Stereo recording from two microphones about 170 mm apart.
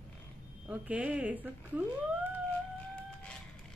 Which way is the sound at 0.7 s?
10° right (ahead or behind).